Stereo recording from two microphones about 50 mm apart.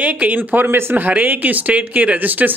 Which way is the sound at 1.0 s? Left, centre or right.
Right.